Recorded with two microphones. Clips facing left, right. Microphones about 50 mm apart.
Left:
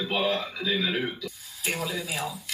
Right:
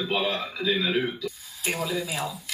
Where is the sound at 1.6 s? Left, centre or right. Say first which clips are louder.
Right 2 dB; centre.